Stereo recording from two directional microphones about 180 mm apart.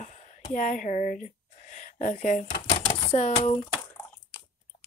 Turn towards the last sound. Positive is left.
turn(degrees=35)  # may be behind; listen again after turning